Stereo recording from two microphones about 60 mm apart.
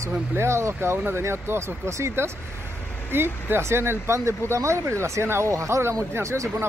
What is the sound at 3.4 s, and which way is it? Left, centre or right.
Speech, right.